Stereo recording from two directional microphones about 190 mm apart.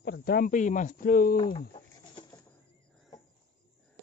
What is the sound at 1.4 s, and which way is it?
Speech, 25° left (ahead or behind).